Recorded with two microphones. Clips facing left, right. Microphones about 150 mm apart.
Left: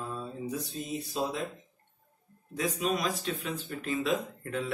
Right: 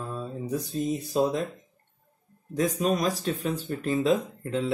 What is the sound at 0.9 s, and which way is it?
Speech, 40° right (ahead or behind).